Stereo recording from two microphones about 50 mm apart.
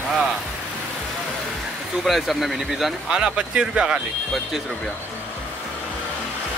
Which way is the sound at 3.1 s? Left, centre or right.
Centre.